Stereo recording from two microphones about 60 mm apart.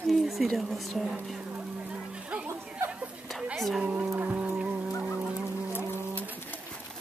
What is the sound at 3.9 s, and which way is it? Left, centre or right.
Music, right.